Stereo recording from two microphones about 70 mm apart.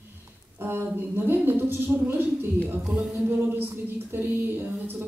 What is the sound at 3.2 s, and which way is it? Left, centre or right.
A woman's voice, right.